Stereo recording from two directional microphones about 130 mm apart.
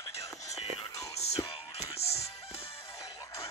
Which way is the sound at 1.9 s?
55° left (ahead or behind).